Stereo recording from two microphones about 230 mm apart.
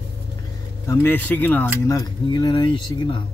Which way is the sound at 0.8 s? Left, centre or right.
Centre.